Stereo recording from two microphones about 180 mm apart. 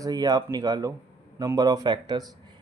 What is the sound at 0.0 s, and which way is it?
Speech, 20° right (ahead or behind).